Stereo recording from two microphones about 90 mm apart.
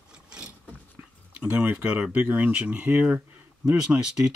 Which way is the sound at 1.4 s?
15° right (ahead or behind).